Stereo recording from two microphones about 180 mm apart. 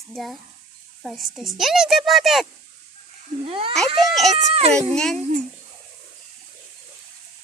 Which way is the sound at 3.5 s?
30° right (ahead or behind).